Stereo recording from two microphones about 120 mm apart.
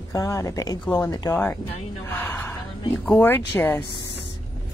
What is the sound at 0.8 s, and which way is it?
Speech, 10° left (ahead or behind).